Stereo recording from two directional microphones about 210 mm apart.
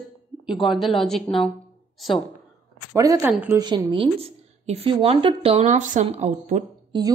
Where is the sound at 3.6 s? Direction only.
20° right (ahead or behind).